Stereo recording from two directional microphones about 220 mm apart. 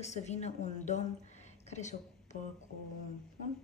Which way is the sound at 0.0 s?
30° left (ahead or behind).